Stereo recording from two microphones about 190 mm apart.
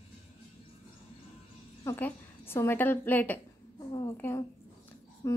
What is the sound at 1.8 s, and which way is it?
A woman's voice, 10° left (ahead or behind).